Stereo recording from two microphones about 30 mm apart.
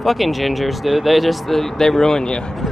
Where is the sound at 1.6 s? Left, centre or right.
Centre.